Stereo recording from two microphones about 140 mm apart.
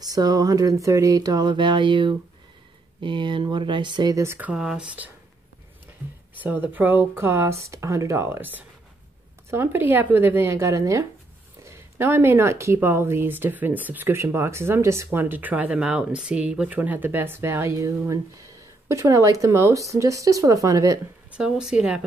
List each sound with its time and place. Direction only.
0.0 s speech: 25° right (ahead or behind); by 5.1 s 10° right (ahead or behind)
6.4 s speech: 15° right (ahead or behind)
21.4 s speech: 5° right (ahead or behind)